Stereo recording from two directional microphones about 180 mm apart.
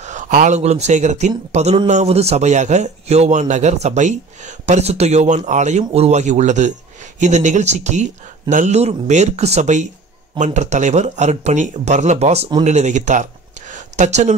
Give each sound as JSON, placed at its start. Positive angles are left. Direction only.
{"t": 0.0, "sound": "speech", "side_deg": -45}